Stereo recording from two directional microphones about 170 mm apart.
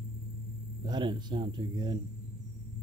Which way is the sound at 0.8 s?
25° right (ahead or behind).